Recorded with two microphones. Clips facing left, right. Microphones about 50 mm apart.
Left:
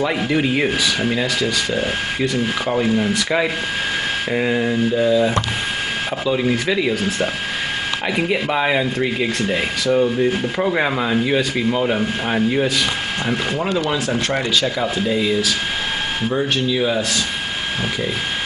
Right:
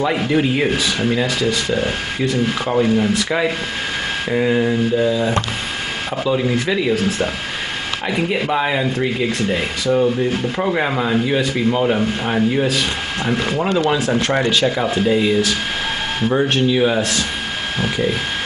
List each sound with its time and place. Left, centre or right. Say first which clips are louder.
0.0 s speech: right 2 dB; centre
6.3 s speech: even; centre
13.8 s speech: right 3 dB; centre
17.7 s speech: right 5 dB; centre